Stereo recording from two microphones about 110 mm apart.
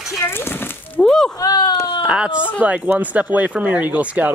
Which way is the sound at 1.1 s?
5° left (ahead or behind).